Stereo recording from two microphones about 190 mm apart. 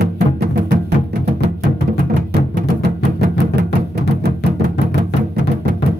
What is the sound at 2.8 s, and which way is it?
Music, 60° right (ahead or behind).